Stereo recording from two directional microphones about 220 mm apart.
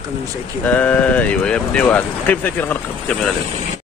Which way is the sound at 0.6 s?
5° left (ahead or behind).